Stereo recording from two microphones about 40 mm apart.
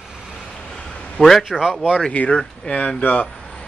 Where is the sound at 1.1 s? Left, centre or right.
Centre.